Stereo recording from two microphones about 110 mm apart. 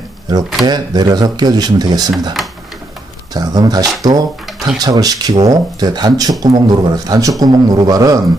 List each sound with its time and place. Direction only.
0.7 s a man's voice: 40° right (ahead or behind)
3.3 s a man's voice: 35° right (ahead or behind)